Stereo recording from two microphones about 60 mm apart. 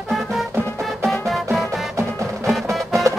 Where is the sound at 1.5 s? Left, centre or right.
Centre.